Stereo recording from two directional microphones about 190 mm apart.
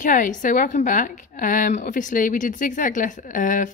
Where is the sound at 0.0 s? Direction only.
45° left (ahead or behind).